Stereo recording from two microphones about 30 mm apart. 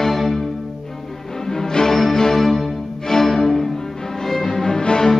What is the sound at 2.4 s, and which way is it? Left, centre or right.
Music, centre.